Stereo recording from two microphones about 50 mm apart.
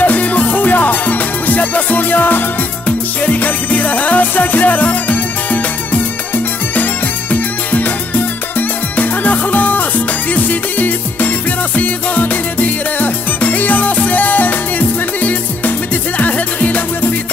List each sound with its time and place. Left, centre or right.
0.0 s music: left